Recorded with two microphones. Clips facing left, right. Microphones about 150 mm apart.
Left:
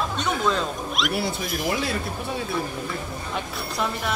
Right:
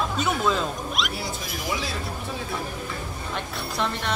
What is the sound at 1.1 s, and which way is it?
Speech, 65° left (ahead or behind).